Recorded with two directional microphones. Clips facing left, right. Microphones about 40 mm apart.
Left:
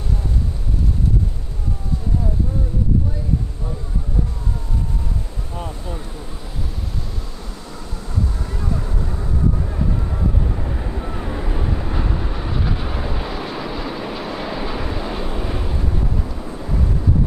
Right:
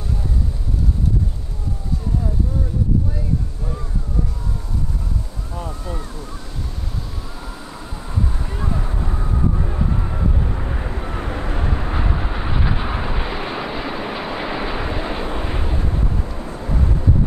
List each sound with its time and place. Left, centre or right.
8.7 s vehicle: right
16.5 s wind noise: centre